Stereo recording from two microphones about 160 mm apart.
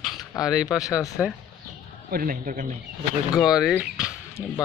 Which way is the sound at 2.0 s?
65° right (ahead or behind).